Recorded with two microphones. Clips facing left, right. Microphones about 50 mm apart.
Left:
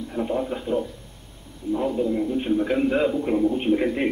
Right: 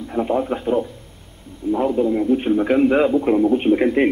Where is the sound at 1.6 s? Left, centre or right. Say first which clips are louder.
Right 5 dB; right.